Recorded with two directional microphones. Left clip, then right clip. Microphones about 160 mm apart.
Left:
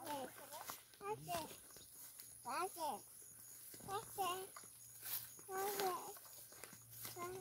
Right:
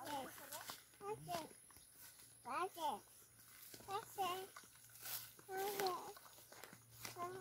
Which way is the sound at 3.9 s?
20° right (ahead or behind).